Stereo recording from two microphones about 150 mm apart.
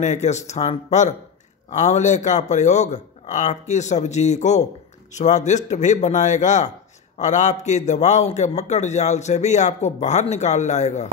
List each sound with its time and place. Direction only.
0.0 s a man's voice: 50° left (ahead or behind)